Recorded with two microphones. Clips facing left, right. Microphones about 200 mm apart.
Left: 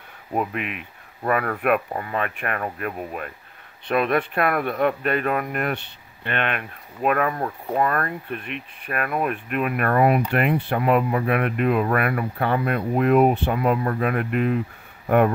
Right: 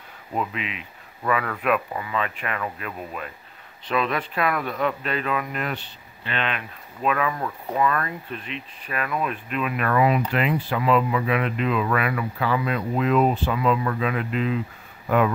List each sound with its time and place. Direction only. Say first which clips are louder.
0.4 s speech: left 2 dB; 55° left (ahead or behind)